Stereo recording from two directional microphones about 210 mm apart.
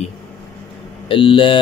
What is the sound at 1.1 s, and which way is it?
Speech, 25° left (ahead or behind).